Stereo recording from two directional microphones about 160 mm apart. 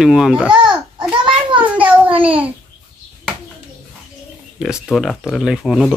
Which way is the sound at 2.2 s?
10° right (ahead or behind).